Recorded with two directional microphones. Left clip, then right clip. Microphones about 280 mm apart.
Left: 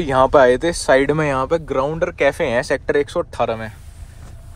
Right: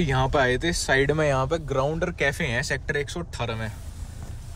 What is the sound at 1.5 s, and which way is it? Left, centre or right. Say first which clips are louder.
Speech: left 6 dB; centre.